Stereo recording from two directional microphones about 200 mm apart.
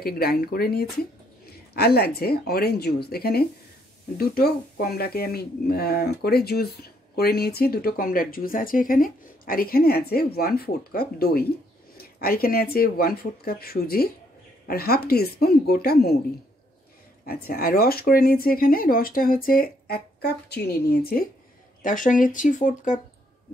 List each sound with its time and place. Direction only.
0.0 s speech: 50° left (ahead or behind)
17.3 s speech: 50° left (ahead or behind)